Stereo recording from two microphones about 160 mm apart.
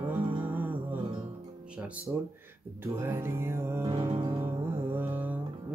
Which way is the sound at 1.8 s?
10° right (ahead or behind).